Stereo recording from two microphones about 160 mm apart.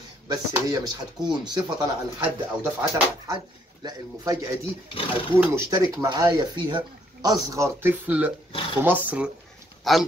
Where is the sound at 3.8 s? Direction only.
20° right (ahead or behind).